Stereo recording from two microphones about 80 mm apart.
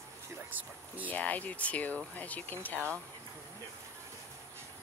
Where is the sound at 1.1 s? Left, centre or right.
Centre.